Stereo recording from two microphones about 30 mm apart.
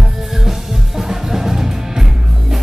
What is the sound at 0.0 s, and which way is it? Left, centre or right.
Music, centre.